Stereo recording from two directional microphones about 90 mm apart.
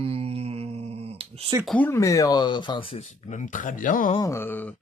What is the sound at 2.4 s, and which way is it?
Speech, 60° left (ahead or behind).